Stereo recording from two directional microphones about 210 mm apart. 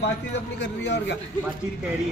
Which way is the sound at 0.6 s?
55° left (ahead or behind).